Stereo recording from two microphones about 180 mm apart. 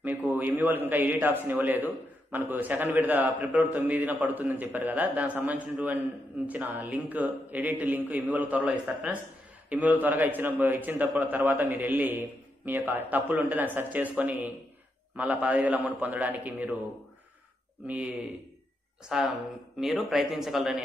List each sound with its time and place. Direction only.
0.0 s a man's voice: 10° right (ahead or behind)
17.8 s a man's voice: 5° right (ahead or behind)